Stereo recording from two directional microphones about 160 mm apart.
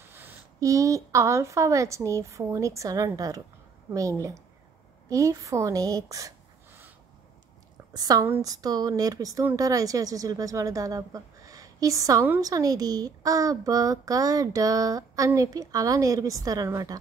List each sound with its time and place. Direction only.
0.0 s a woman's voice: 15° right (ahead or behind)
7.9 s a woman's voice: 25° right (ahead or behind)